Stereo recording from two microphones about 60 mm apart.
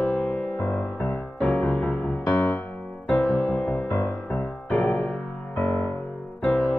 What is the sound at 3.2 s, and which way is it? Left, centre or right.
Music, left.